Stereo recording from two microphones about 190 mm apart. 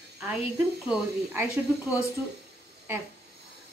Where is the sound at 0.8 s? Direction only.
10° right (ahead or behind).